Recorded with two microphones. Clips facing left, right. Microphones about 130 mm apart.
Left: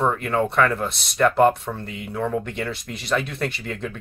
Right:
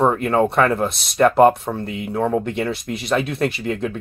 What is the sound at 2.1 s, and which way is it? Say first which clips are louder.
Speech: right 5 dB; 45° right (ahead or behind).